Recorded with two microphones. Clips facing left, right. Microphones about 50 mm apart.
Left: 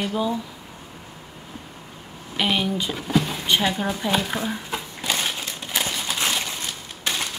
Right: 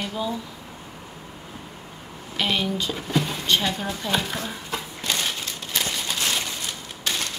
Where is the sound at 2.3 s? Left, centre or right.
Centre.